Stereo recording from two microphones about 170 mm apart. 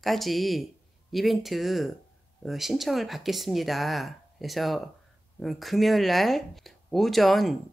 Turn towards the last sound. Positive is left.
turn(degrees=0)  # may be behind; listen again after turning